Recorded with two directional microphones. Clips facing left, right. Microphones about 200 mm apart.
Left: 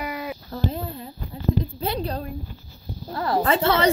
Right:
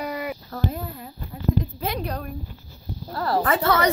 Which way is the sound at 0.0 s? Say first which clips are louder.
Right 1 dB; centre (ahead or behind).